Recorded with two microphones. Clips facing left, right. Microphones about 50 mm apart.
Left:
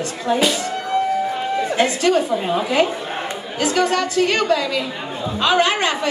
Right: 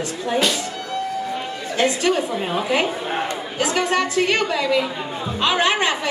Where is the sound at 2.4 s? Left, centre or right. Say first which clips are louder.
Left 3 dB; centre.